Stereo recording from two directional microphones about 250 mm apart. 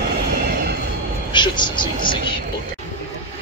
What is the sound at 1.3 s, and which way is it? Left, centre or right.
Speech, centre.